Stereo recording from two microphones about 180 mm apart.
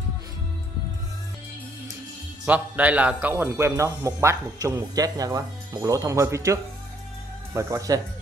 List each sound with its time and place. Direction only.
2.4 s a man's voice: 10° right (ahead or behind)